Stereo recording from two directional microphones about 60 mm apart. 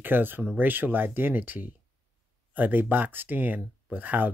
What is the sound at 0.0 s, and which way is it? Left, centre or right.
Speech, right.